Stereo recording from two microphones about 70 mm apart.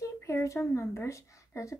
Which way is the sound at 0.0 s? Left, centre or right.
Left.